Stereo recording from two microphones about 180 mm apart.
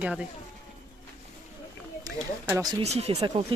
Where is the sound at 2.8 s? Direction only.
35° right (ahead or behind).